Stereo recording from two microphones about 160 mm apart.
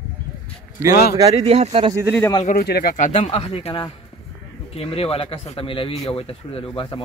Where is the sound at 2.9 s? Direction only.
45° left (ahead or behind).